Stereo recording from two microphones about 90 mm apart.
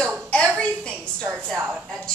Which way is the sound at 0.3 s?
15° left (ahead or behind).